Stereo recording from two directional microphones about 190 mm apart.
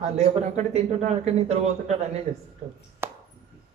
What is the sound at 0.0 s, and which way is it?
A man's voice, 35° right (ahead or behind).